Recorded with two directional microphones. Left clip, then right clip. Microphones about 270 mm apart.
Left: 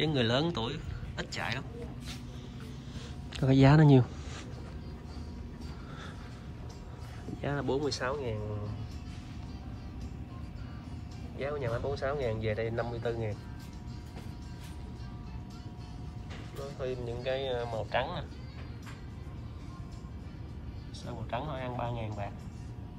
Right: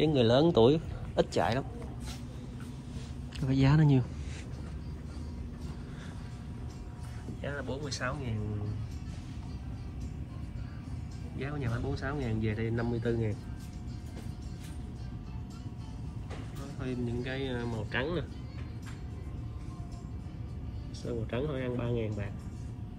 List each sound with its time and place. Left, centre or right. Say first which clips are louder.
0.0 s speech: right 4 dB; centre
3.3 s speech: left 5 dB; centre
7.4 s speech: left 6 dB; centre
11.4 s speech: left 5 dB; centre
16.8 s speech: left 2 dB; centre
21.0 s speech: right 2 dB; centre